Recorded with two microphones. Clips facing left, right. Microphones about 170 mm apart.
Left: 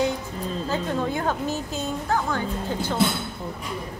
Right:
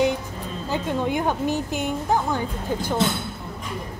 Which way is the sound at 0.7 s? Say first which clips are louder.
Right 3 dB; 15° right (ahead or behind).